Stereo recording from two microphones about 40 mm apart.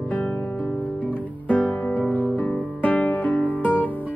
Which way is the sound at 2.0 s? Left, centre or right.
Left.